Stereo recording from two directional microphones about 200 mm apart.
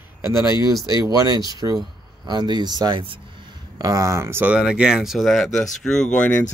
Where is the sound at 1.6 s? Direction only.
20° right (ahead or behind); by 6.3 s 5° left (ahead or behind).